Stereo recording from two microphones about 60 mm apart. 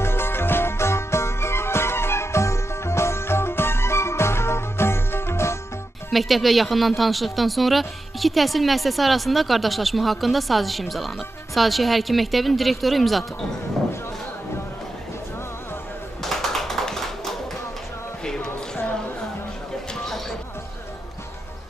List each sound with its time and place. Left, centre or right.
0.0 s music: left
6.1 s speech: centre
16.2 s tap: centre
18.2 s a sound: centre